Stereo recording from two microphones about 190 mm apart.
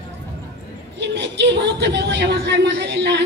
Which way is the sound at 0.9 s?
65° right (ahead or behind).